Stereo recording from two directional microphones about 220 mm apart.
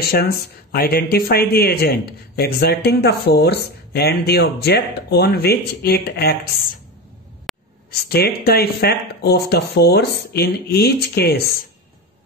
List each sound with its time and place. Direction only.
0.0 s speech: 45° left (ahead or behind)
7.5 s a sound: centre (ahead or behind)
8.1 s speech: 45° left (ahead or behind)